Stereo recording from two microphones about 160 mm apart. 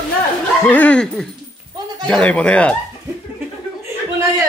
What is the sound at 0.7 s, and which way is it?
Speech, 10° left (ahead or behind).